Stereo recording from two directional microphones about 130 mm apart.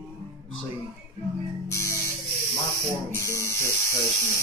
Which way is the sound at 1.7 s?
25° left (ahead or behind).